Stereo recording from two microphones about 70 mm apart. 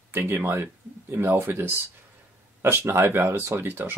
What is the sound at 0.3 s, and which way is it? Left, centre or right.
Speech, right.